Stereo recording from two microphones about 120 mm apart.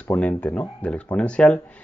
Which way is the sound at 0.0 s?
10° left (ahead or behind).